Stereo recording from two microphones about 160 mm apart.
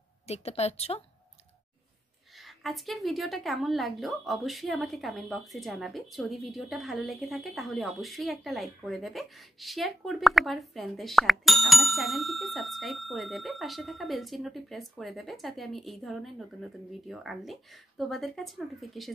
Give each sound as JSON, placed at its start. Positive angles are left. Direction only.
{"t": 0.3, "sound": "a woman's voice", "side_deg": 40}
{"t": 2.3, "sound": "a woman's voice", "side_deg": 0}